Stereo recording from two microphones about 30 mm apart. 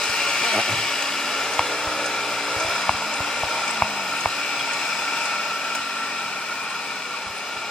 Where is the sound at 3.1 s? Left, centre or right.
Centre.